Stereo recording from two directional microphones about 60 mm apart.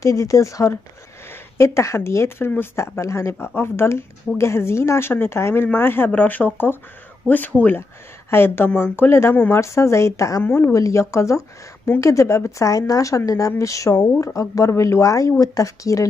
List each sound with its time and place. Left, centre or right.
0.0 s speech: left
3.3 s speech: left
8.3 s speech: left
9.5 s speech: left
13.5 s speech: left